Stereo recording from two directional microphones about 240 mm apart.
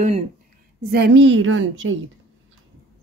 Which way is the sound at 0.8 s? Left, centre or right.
Right.